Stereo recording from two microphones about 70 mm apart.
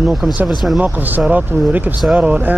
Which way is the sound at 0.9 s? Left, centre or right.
Right.